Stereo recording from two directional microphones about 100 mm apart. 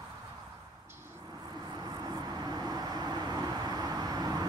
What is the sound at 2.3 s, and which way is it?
Vehicle, 40° right (ahead or behind).